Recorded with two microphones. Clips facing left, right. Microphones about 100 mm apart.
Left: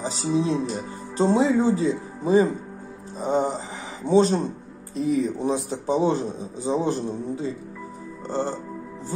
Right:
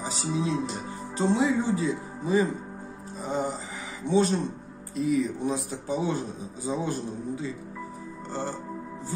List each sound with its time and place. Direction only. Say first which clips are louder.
0.0 s speech: left 5 dB; 30° left (ahead or behind)
8.3 s music: left 6 dB; 30° left (ahead or behind)